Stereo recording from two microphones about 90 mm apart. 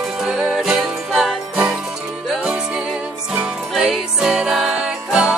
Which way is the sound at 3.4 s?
5° right (ahead or behind).